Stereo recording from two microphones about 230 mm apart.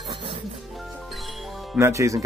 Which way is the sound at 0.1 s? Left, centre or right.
Right.